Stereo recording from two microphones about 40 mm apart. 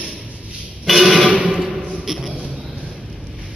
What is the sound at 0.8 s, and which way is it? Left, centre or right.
Music, centre.